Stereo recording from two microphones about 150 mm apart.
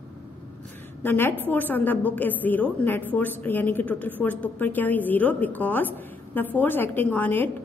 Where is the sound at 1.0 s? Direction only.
15° left (ahead or behind).